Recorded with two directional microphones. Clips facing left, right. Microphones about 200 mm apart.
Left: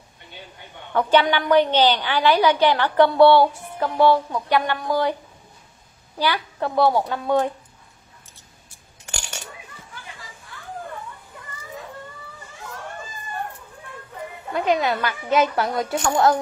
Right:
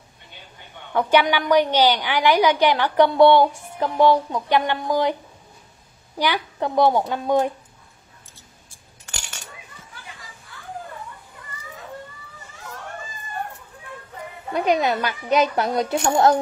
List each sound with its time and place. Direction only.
0.9 s a woman's voice: 15° right (ahead or behind)
6.1 s a woman's voice: 15° right (ahead or behind)
14.5 s speech: 20° right (ahead or behind)